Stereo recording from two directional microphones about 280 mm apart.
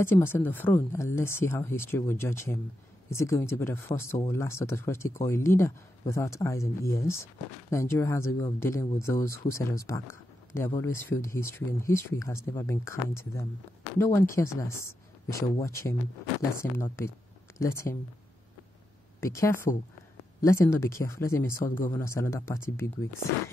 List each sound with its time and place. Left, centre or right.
0.0 s speech: centre
19.1 s speech: centre
21.6 s speech: left
21.9 s speech: centre